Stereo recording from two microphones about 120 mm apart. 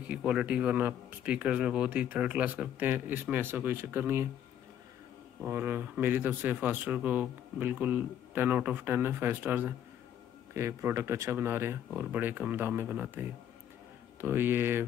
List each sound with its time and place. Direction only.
0.1 s speech: 10° right (ahead or behind)
5.4 s speech: 20° right (ahead or behind)